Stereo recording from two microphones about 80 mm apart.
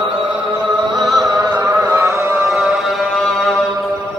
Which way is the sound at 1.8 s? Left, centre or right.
Right.